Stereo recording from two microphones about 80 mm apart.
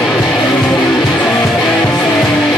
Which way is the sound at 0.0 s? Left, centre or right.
Centre.